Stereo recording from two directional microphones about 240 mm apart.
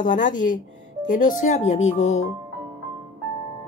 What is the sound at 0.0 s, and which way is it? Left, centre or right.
Speech, left.